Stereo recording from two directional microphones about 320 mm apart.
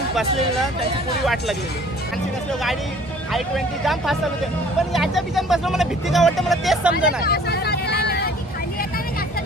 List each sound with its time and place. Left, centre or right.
1.2 s speech: centre
3.3 s speech: centre
7.2 s vehicle: left